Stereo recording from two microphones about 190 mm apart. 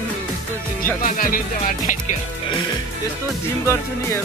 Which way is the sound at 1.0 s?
45° left (ahead or behind).